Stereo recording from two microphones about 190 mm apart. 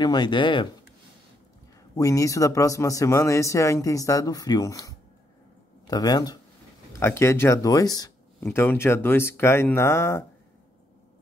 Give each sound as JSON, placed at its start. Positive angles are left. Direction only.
{"t": 0.0, "sound": "speech", "side_deg": 20}
{"t": 2.0, "sound": "speech", "side_deg": 15}